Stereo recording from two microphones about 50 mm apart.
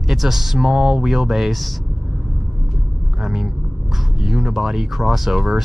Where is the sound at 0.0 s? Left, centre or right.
Centre.